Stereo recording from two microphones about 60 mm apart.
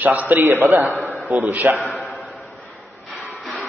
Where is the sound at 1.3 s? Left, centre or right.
Right.